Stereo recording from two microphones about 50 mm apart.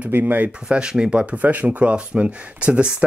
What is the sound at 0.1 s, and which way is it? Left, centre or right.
Speech, right.